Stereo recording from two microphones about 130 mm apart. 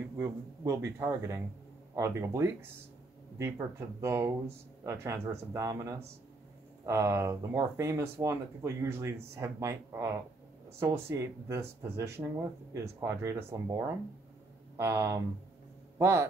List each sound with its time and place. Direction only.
0.2 s speech: 25° right (ahead or behind)